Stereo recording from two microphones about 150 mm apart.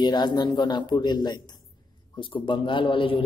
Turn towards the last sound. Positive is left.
turn(degrees=35)  # may be behind; listen again after turning